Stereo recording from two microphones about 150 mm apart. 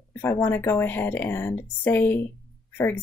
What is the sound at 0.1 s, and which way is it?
Speech, 15° left (ahead or behind).